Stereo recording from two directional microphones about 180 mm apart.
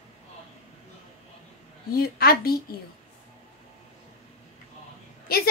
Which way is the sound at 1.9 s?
55° left (ahead or behind).